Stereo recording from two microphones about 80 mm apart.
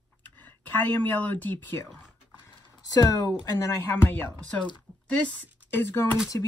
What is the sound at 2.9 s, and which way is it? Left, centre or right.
Speech, left.